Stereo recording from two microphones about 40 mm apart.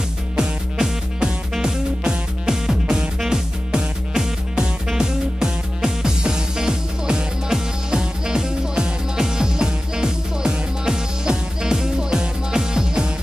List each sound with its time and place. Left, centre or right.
0.4 s music: centre